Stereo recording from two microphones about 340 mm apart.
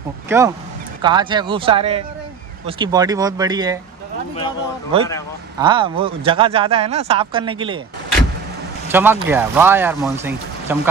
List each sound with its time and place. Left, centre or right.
0.3 s speech: centre
5.6 s speech: centre
8.8 s speech: centre